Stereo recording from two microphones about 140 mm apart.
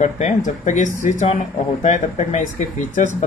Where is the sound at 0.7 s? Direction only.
65° left (ahead or behind).